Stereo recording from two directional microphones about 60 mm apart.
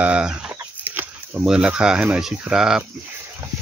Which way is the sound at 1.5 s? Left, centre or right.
Centre.